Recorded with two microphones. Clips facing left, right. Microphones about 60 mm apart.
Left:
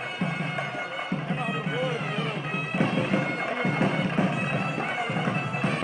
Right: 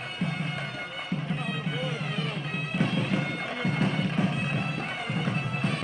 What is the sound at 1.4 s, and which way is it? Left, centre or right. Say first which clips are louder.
Music: left 4 dB; centre.